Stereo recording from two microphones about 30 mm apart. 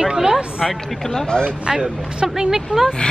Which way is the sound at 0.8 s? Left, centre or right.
Centre.